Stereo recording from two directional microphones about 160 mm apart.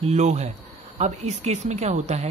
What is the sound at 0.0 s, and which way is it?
Speech, 45° right (ahead or behind).